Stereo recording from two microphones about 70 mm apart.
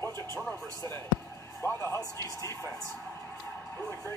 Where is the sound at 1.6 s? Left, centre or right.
Left.